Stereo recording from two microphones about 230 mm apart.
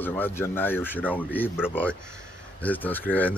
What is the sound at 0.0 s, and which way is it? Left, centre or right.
Speech, centre.